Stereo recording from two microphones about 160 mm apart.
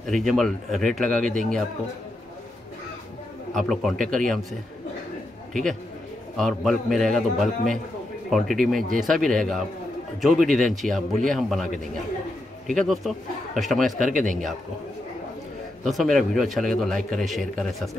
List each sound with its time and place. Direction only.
0.0 s a man's voice: centre (ahead or behind)
3.5 s a man's voice: centre (ahead or behind)
6.3 s a man's voice: centre (ahead or behind)
13.9 s speech: 55° right (ahead or behind)
15.8 s a man's voice: centre (ahead or behind)